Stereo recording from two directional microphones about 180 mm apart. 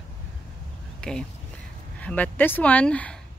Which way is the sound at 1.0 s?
5° left (ahead or behind).